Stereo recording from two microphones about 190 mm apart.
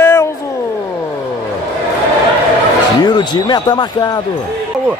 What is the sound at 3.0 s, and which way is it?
Speech, 20° left (ahead or behind).